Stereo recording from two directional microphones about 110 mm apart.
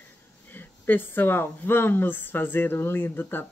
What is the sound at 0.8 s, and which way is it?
Speech, 20° left (ahead or behind).